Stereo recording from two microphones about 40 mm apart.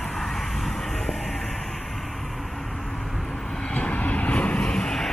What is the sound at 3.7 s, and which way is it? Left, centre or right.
Vehicle, left.